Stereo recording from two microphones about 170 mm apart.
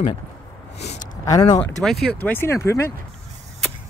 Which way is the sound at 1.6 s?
5° left (ahead or behind).